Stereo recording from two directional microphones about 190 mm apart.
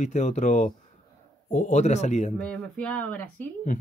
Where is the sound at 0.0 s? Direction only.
40° left (ahead or behind).